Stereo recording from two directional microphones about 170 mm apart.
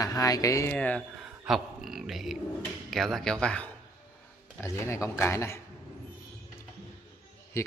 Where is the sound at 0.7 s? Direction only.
10° left (ahead or behind).